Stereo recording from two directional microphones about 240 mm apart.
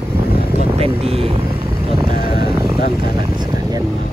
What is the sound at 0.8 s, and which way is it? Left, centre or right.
Speech, right.